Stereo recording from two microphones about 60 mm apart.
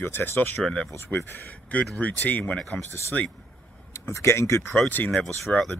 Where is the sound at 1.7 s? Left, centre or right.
Left.